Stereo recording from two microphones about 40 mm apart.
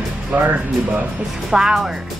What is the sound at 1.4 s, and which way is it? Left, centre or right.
Speech, centre.